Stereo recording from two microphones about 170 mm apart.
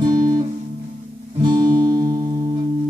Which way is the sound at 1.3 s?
25° right (ahead or behind).